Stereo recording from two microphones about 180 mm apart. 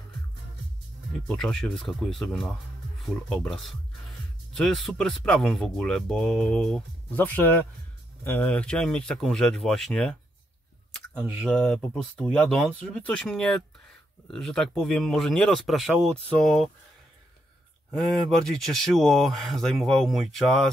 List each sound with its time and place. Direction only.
1.2 s speech: 5° left (ahead or behind)
11.1 s speech: 5° left (ahead or behind)
18.1 s speech: centre (ahead or behind)